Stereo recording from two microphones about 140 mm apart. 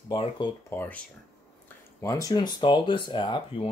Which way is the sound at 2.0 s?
25° left (ahead or behind).